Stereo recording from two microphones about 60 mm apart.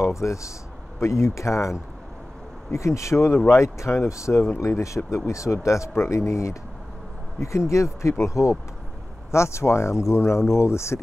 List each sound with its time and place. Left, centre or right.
0.0 s speech: left